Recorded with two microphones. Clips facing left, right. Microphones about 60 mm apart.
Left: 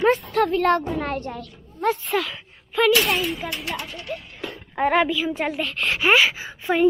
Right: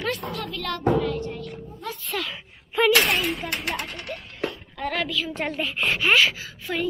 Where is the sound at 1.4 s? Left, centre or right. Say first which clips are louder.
Right 5 dB; right.